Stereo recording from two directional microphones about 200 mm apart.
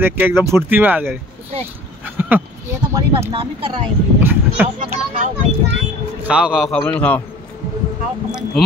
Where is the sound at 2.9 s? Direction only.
15° right (ahead or behind).